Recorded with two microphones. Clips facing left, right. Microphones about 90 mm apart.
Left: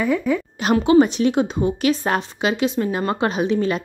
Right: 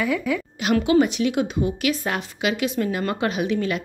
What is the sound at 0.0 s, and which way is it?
A woman's voice, 30° left (ahead or behind).